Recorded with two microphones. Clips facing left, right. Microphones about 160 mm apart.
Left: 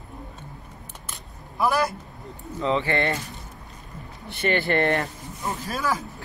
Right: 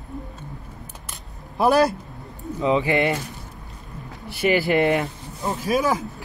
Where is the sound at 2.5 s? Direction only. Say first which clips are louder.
Right 4 dB; 15° right (ahead or behind).